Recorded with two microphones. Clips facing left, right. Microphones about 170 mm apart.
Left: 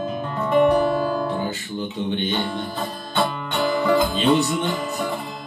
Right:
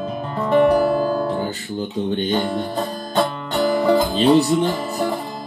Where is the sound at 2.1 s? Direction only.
40° right (ahead or behind).